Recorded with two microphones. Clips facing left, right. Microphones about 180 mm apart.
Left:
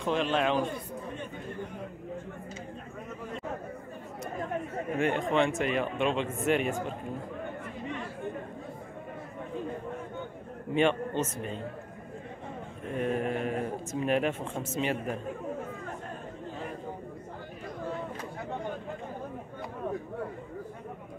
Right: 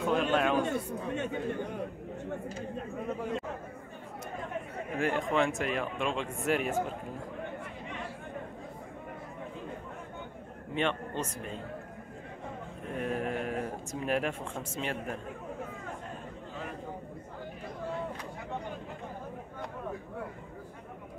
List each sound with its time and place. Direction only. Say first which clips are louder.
0.0 s speech: even; centre (ahead or behind)
0.6 s a man's voice: right 1 dB; 70° right (ahead or behind)
4.9 s speech: left 2 dB; centre (ahead or behind)
10.7 s a man's voice: left 6 dB; 5° left (ahead or behind)
12.9 s speech: left 3 dB; centre (ahead or behind)